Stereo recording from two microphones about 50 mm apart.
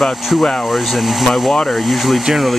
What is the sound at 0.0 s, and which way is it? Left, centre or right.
Speech, centre.